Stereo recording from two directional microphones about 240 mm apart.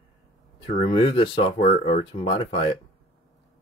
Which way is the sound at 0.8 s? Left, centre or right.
Left.